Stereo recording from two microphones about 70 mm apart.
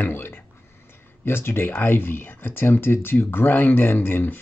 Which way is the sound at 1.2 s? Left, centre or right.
Left.